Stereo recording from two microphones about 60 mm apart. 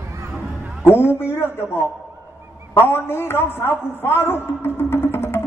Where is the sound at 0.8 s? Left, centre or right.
Left.